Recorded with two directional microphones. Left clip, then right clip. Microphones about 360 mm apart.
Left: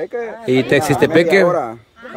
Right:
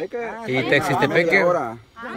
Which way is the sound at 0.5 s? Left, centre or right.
Centre.